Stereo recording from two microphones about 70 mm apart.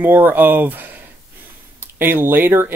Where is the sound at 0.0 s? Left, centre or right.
Right.